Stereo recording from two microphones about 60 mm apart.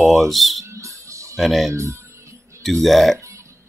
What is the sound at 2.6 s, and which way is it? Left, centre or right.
Speech, centre.